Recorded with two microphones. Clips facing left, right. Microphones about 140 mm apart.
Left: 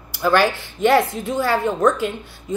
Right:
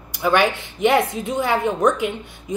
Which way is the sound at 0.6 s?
20° right (ahead or behind).